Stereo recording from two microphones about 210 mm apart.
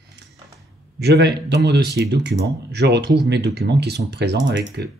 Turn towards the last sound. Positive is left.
turn(degrees=-55)  # may be behind; listen again after turning